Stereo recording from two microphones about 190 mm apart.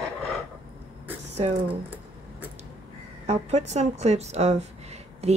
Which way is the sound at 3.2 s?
35° right (ahead or behind).